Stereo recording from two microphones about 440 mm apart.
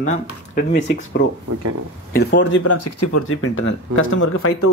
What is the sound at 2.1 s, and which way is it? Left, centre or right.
Speech, left.